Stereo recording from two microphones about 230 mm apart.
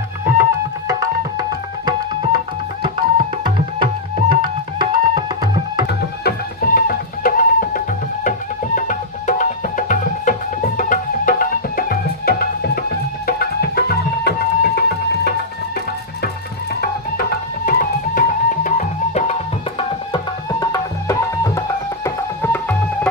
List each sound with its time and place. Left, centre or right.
0.2 s music: centre
1.9 s tabla: centre
3.8 s music: right
5.9 s music: left
17.2 s music: left
19.8 s tabla: centre